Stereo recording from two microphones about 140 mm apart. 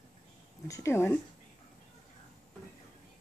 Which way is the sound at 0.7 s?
20° left (ahead or behind).